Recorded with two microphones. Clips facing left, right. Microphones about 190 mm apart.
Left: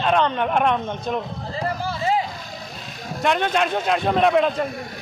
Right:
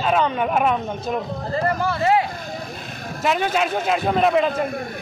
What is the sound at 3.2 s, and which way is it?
A man's voice, 5° right (ahead or behind).